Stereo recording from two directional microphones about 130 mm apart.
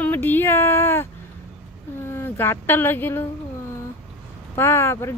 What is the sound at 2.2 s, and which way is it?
Speech, 15° left (ahead or behind).